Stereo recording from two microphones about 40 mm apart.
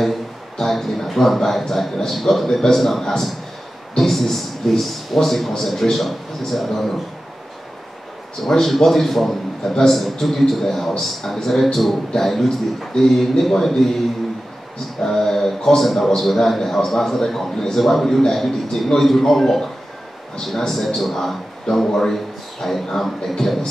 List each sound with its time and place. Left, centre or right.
0.6 s a man's voice: centre
8.5 s a man's voice: centre